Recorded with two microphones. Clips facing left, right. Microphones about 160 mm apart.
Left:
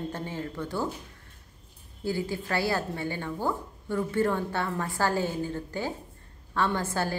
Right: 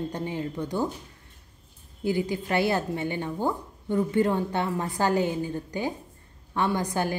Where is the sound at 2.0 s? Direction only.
20° right (ahead or behind).